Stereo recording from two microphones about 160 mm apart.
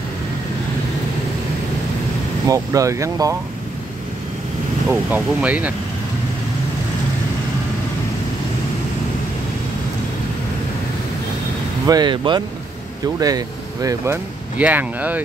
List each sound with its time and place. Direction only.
2.4 s speech: 20° right (ahead or behind)
5.1 s speech: 10° right (ahead or behind)
11.8 s speech: 25° right (ahead or behind); by 15.2 s 10° right (ahead or behind)